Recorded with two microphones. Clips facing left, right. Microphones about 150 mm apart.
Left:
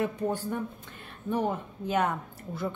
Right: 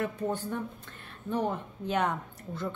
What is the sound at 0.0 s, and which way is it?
Speech, 10° left (ahead or behind).